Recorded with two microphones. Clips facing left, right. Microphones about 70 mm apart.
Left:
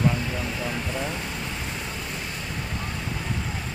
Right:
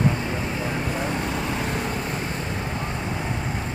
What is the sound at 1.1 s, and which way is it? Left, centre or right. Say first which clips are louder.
Vehicle: right 6 dB; right.